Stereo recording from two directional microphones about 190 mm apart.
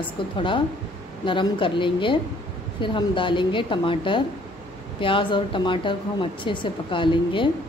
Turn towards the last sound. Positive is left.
turn(degrees=25)  # may be behind; listen again after turning